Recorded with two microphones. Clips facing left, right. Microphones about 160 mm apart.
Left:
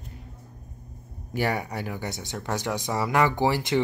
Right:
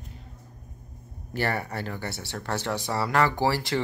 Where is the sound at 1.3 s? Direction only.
15° left (ahead or behind).